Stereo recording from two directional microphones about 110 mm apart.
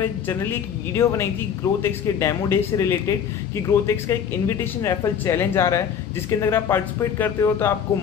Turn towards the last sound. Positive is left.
turn(degrees=25)  # may be behind; listen again after turning